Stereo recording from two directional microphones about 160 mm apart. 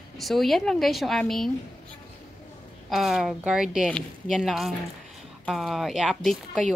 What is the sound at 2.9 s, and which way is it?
Speech, centre (ahead or behind).